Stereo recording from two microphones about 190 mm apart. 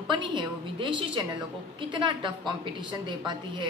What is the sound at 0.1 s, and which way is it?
Speech, 25° right (ahead or behind).